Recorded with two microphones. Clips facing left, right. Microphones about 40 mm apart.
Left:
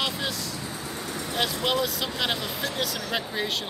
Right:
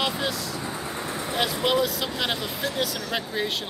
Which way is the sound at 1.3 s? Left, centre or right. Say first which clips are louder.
Right 2 dB; centre.